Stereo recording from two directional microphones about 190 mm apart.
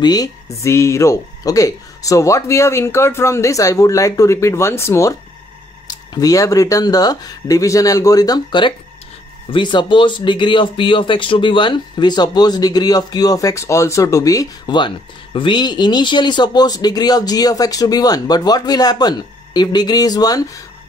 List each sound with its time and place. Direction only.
0.0 s speech: 20° left (ahead or behind)